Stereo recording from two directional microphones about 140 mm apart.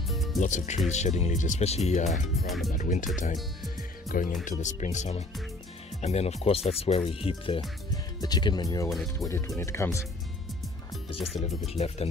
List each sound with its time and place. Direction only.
0.1 s music: centre (ahead or behind)
0.4 s speech: 60° left (ahead or behind)
2.4 s speech: centre (ahead or behind)
2.7 s speech: 65° left (ahead or behind)
4.1 s speech: 70° left (ahead or behind)
4.5 s speech: 60° left (ahead or behind); by 7.6 s 40° left (ahead or behind)
7.9 s speech: 30° left (ahead or behind)
8.8 s speech: centre (ahead or behind)
9.3 s speech: 20° left (ahead or behind)
11.1 s speech: centre (ahead or behind)
11.4 s speech: 45° left (ahead or behind)